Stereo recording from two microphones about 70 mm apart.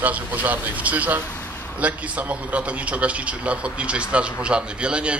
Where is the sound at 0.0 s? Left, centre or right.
Right.